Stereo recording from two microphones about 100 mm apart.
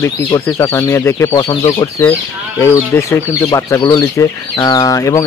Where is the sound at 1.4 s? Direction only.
55° left (ahead or behind).